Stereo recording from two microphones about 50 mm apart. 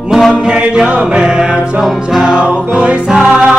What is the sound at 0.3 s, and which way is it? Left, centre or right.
Music, centre.